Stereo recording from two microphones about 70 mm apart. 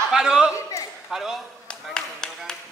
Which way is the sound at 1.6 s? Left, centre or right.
Centre.